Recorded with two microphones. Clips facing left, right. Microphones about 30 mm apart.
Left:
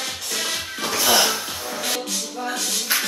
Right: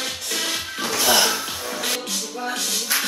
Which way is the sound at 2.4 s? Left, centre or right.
Centre.